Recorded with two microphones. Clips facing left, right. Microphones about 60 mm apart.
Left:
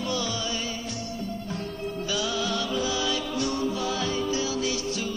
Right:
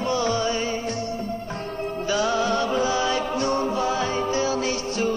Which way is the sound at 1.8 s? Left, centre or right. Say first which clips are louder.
Right 7 dB; right.